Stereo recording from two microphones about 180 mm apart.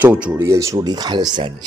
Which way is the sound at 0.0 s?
5° right (ahead or behind).